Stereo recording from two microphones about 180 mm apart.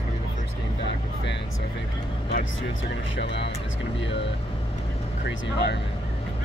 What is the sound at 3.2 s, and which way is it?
Speech, 75° left (ahead or behind).